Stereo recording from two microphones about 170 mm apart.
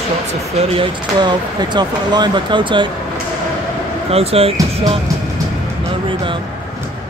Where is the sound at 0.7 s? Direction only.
30° right (ahead or behind).